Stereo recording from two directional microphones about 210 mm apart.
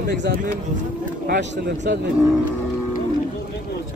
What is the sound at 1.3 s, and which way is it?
Speech, 50° right (ahead or behind).